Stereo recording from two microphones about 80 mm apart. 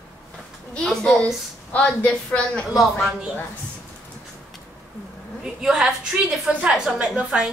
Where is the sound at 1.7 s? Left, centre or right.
Centre.